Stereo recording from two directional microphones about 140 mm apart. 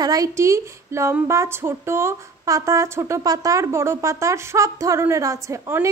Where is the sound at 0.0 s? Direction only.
25° right (ahead or behind).